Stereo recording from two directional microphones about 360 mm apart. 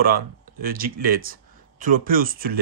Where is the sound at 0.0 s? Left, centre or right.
Right.